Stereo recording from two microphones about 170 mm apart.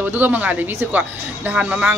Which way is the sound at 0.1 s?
10° right (ahead or behind).